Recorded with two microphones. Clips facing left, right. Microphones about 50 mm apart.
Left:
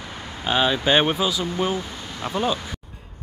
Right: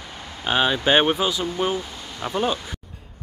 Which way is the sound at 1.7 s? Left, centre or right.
Centre.